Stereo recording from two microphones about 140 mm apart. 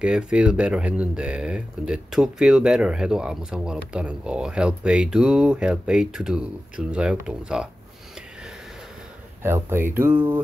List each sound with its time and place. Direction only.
0.0 s speech: 5° right (ahead or behind)
9.4 s speech: 15° right (ahead or behind)